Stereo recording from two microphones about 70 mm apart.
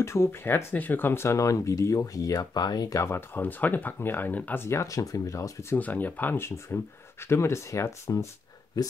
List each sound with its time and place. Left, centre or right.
0.0 s speech: left
3.0 s speech: left
4.6 s speech: left
5.8 s speech: left
8.8 s speech: left